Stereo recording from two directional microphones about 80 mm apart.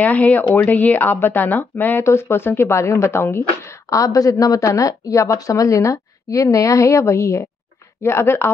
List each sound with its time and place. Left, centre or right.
0.0 s speech: centre